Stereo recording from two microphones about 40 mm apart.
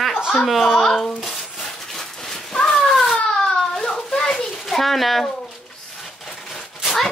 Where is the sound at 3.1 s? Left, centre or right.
Centre.